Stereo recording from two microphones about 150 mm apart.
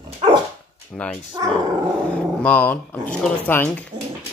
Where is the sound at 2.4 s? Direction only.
10° left (ahead or behind).